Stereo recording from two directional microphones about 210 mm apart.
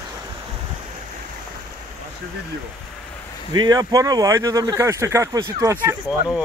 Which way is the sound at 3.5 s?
20° right (ahead or behind).